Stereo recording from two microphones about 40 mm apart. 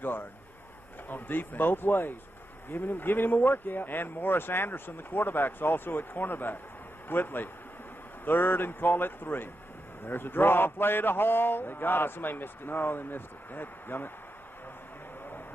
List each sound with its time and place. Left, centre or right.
0.0 s a man's voice: left